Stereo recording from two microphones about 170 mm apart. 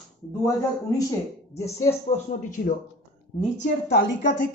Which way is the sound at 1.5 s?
15° left (ahead or behind).